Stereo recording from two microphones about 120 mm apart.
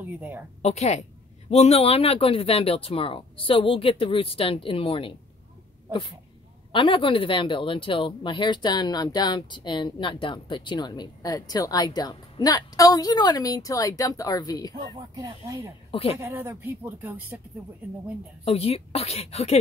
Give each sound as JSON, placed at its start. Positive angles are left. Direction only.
{"t": 0.0, "sound": "a woman's voice", "side_deg": -15}
{"t": 0.6, "sound": "a woman's voice", "side_deg": 65}
{"t": 6.7, "sound": "speech", "side_deg": 45}
{"t": 15.0, "sound": "speech", "side_deg": -35}
{"t": 15.9, "sound": "speech", "side_deg": 50}
{"t": 16.2, "sound": "speech", "side_deg": -20}
{"t": 18.4, "sound": "speech", "side_deg": 55}